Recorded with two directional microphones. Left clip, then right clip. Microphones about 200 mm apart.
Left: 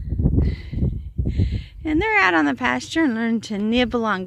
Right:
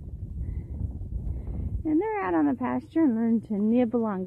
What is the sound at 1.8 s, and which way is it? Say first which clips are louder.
Speech: left 9 dB; 15° left (ahead or behind).